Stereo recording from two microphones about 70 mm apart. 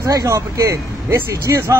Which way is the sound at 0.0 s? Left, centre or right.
Right.